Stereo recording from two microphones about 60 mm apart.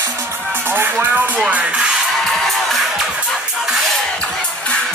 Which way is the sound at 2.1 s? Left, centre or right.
Centre.